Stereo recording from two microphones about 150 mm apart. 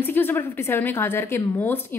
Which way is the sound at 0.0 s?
15° left (ahead or behind).